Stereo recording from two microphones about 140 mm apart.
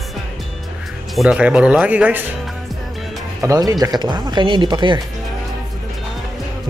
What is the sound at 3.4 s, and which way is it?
Speech, 25° right (ahead or behind).